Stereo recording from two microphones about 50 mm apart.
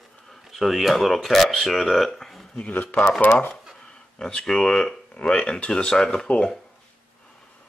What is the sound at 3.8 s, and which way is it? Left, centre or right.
Speech, centre.